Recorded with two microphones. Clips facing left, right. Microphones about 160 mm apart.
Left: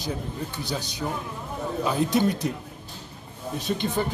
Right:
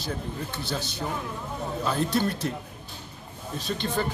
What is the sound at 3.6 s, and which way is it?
Speech, 15° left (ahead or behind).